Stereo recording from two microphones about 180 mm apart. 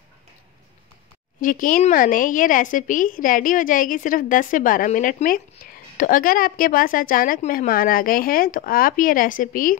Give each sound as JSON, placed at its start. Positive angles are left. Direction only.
{"t": 1.4, "sound": "a woman's voice", "side_deg": 50}